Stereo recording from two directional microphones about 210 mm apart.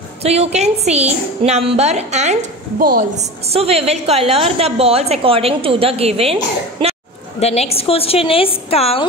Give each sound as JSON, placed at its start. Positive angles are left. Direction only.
{"t": 0.2, "sound": "a woman's voice", "side_deg": -30}
{"t": 7.3, "sound": "a woman's voice", "side_deg": 30}